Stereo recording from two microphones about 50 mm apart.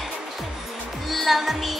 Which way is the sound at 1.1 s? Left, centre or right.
Centre.